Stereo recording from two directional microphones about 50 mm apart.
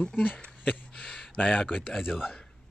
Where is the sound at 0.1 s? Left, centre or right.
Left.